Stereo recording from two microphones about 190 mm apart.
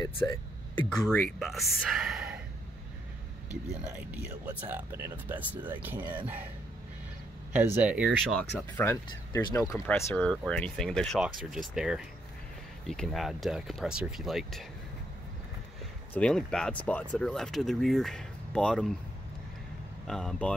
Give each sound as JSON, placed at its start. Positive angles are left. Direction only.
{"t": 0.0, "sound": "speech", "side_deg": 20}
{"t": 0.8, "sound": "speech", "side_deg": 5}
{"t": 4.0, "sound": "speech", "side_deg": -10}
{"t": 7.5, "sound": "speech", "side_deg": -10}
{"t": 16.1, "sound": "speech", "side_deg": 5}
{"t": 20.1, "sound": "speech", "side_deg": 5}